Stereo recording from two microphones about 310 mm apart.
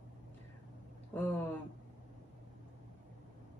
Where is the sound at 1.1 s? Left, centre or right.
Centre.